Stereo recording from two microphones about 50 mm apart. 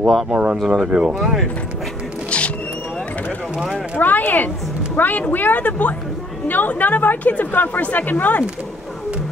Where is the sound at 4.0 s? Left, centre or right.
Left.